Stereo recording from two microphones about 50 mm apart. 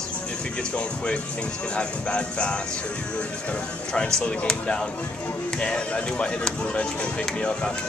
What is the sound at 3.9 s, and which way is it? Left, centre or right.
Speech, left.